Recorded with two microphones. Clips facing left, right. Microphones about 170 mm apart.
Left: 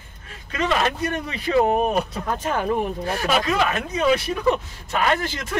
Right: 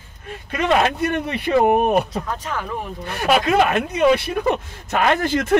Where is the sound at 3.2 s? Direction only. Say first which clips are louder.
Right 6 dB; 60° right (ahead or behind).